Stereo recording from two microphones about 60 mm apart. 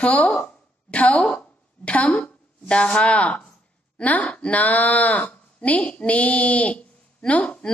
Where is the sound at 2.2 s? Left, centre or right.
Centre.